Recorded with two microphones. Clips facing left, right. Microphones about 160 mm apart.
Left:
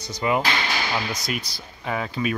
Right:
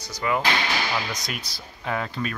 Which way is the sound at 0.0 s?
20° left (ahead or behind).